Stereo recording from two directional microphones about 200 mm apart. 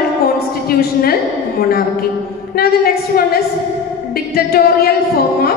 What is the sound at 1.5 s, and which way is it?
A woman's voice, 50° left (ahead or behind).